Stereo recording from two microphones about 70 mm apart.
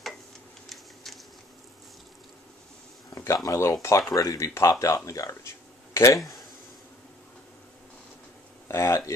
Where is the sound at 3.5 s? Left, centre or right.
Left.